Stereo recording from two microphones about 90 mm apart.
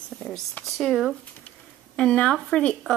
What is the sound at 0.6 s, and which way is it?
Speech, 5° left (ahead or behind).